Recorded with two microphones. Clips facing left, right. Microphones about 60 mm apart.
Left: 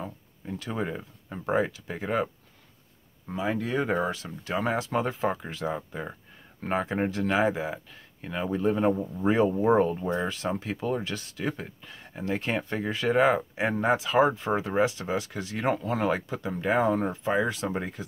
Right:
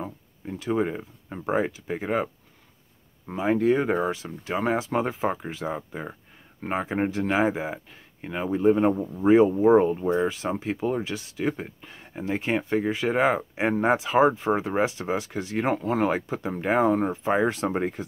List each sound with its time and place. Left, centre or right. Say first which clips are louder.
0.0 s speech: right 3 dB; centre
3.3 s speech: right 7 dB; right
3.8 s speech: right 2 dB; centre
6.6 s speech: right 1 dB; centre
8.9 s speech: right 6 dB; centre
11.0 s speech: right 4 dB; centre; by 18.0 s right